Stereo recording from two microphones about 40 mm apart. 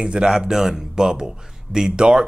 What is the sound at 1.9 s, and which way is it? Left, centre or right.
Speech, right.